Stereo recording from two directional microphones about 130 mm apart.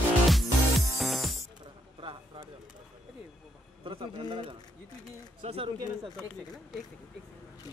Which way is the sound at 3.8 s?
40° right (ahead or behind).